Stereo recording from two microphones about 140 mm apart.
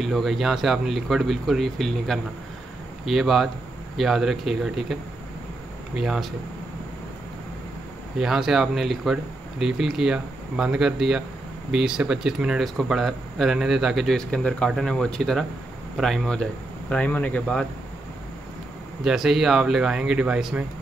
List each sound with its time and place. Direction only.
0.0 s speech: centre (ahead or behind)
5.9 s speech: 5° right (ahead or behind)
8.2 s speech: 5° right (ahead or behind)
19.0 s speech: 5° right (ahead or behind)